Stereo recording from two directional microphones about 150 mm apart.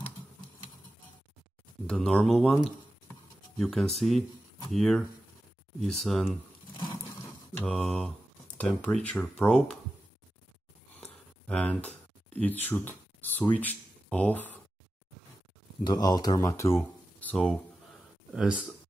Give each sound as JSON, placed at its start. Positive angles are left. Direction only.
{"t": 1.9, "sound": "speech", "side_deg": 5}
{"t": 6.8, "sound": "a sound", "side_deg": 20}
{"t": 7.6, "sound": "speech", "side_deg": 5}
{"t": 11.4, "sound": "speech", "side_deg": 10}
{"t": 15.8, "sound": "speech", "side_deg": 30}
{"t": 18.3, "sound": "speech", "side_deg": -5}